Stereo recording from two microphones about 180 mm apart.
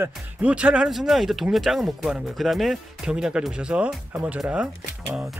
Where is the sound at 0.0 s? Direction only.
5° right (ahead or behind).